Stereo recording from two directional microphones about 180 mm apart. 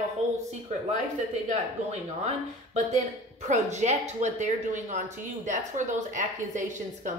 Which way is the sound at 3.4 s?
40° right (ahead or behind).